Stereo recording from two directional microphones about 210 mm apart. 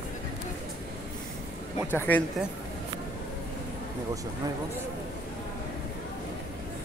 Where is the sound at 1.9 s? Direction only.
10° left (ahead or behind).